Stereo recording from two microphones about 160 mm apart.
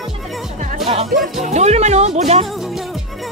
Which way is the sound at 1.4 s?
45° right (ahead or behind).